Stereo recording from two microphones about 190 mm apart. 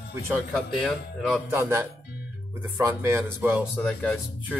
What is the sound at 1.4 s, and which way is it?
Speech, 10° right (ahead or behind).